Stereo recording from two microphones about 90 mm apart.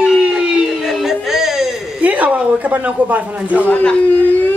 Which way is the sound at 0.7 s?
Centre (ahead or behind).